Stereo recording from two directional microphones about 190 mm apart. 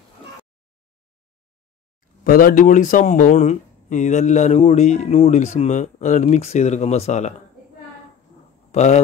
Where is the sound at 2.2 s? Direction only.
50° left (ahead or behind).